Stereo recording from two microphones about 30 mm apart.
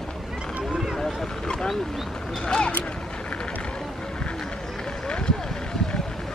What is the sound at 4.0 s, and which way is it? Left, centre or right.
Wild animals, left.